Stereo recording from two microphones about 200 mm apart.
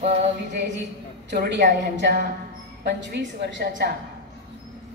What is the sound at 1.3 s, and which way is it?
A woman's voice, 55° right (ahead or behind).